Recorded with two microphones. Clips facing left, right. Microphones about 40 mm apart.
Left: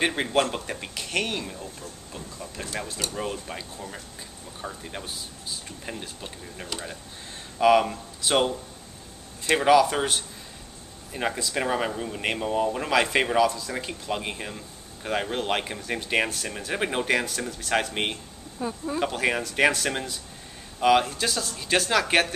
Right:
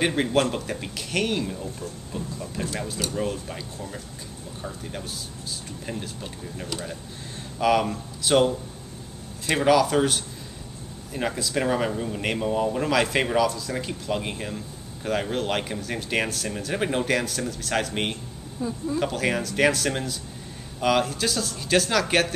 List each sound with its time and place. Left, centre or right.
0.0 s speech: centre
18.6 s speech: left
18.9 s speech: centre